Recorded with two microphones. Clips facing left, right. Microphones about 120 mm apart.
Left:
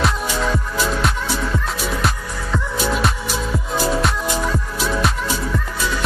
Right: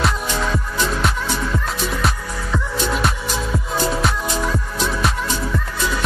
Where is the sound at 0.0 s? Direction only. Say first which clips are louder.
Left 1 dB; centre (ahead or behind).